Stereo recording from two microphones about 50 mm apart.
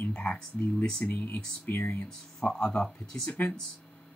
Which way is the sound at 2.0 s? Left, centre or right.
Centre.